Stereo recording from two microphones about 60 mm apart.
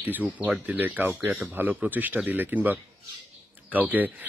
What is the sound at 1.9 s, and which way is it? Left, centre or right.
Speech, right.